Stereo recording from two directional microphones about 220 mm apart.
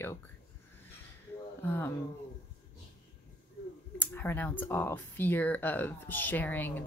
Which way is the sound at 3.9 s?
10° left (ahead or behind).